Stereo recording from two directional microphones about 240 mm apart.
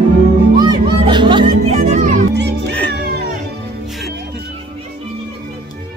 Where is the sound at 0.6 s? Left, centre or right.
Centre.